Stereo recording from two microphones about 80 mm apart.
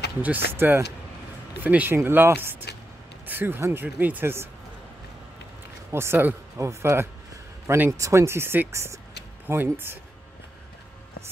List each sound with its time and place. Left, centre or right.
0.2 s speech: right
2.0 s speech: right
5.9 s speech: right